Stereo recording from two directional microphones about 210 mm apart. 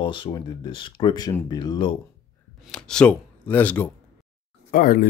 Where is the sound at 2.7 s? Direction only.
5° left (ahead or behind).